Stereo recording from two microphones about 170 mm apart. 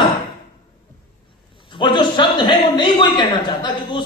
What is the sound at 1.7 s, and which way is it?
A woman's voice, 25° left (ahead or behind).